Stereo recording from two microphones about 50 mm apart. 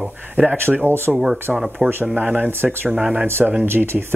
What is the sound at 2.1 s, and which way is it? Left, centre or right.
Speech, right.